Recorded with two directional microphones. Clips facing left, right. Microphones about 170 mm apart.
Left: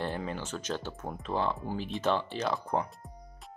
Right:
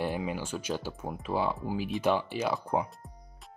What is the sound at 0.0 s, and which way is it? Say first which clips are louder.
Speech: right 2 dB; 10° right (ahead or behind).